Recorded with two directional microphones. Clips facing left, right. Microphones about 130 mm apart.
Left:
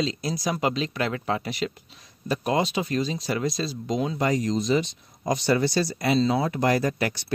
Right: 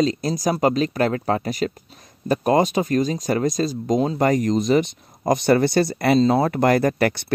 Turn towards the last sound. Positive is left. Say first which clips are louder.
# right 6 dB
turn(degrees=-60)  # may be behind; listen again after turning